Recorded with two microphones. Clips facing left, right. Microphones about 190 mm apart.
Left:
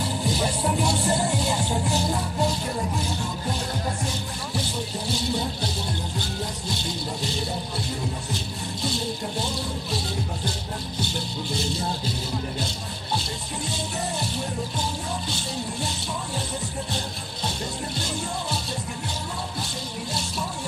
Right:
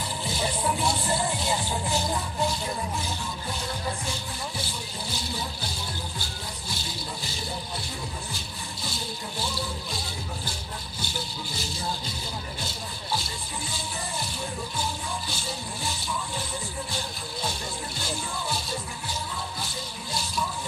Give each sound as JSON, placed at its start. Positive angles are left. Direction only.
{"t": 0.7, "sound": "music", "side_deg": 45}